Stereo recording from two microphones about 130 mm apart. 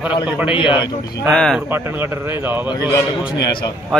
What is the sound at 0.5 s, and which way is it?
Speech, 40° left (ahead or behind).